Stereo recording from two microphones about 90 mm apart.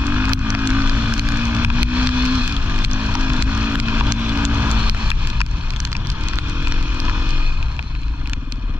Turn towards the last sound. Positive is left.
turn(degrees=-15)  # may be behind; listen again after turning